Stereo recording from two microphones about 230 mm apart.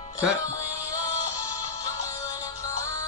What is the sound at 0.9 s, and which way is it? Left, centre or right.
Music, centre.